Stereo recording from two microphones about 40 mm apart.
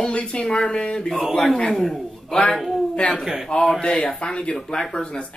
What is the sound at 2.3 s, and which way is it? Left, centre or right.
Speech, left.